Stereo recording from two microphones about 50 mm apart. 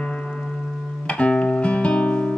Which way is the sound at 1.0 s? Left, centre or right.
Left.